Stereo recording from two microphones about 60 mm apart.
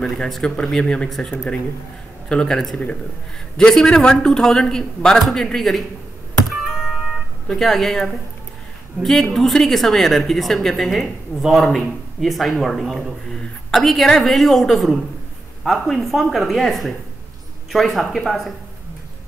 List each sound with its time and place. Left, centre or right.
0.0 s a man's voice: centre
1.3 s speech: left
2.2 s a man's voice: centre
7.4 s a man's voice: centre